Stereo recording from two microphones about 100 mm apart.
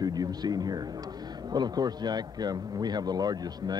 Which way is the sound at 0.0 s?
40° right (ahead or behind).